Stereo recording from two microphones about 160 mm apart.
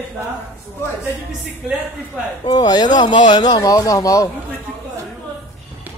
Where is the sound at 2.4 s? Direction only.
25° left (ahead or behind).